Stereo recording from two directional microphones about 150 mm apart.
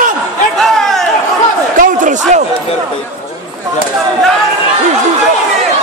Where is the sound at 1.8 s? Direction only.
55° right (ahead or behind).